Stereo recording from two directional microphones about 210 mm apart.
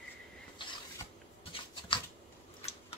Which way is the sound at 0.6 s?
20° left (ahead or behind).